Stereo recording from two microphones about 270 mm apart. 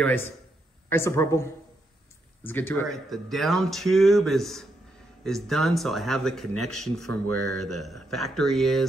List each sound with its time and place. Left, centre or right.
0.0 s speech: centre
7.2 s speech: right
7.8 s speech: centre